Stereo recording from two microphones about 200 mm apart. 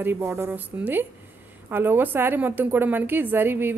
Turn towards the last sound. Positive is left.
turn(degrees=-10)  # may be behind; listen again after turning